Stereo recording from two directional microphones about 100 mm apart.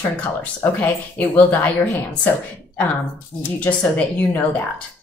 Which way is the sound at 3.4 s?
15° left (ahead or behind).